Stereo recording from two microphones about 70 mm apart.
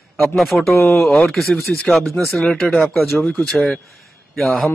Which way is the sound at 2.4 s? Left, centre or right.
Centre.